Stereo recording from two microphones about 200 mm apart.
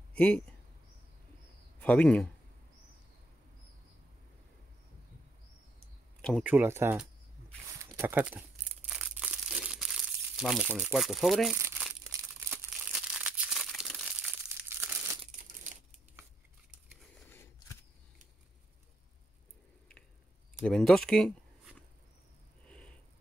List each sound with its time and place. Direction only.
0.1 s a sound: 5° left (ahead or behind)
1.8 s speech: 5° left (ahead or behind)
6.2 s speech: 5° right (ahead or behind)
7.8 s crumpling: 15° right (ahead or behind)
11.5 s crumpling: 15° right (ahead or behind)
15.4 s crumpling: 40° right (ahead or behind)
17.3 s scissors: 10° left (ahead or behind)
20.6 s speech: 5° left (ahead or behind)